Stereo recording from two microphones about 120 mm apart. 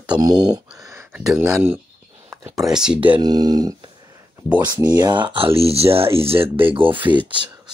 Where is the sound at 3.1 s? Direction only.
35° right (ahead or behind).